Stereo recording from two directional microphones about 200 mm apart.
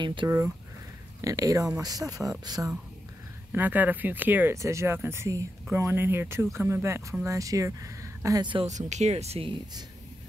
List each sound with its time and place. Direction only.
0.0 s speech: 25° right (ahead or behind)
8.6 s speech: 35° right (ahead or behind)